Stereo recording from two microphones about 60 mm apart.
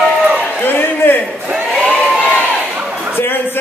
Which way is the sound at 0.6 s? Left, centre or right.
Left.